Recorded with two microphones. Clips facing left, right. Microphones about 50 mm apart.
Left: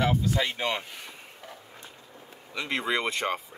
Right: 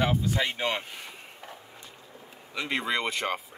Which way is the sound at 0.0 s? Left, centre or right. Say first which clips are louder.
Left 1 dB; centre.